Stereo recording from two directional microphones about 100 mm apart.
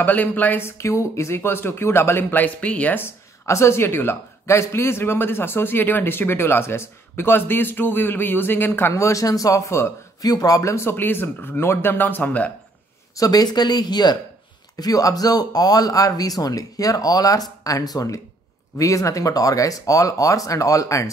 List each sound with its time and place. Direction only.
0.0 s speech: 15° left (ahead or behind)
3.4 s speech: 30° left (ahead or behind)
13.1 s speech: 40° left (ahead or behind)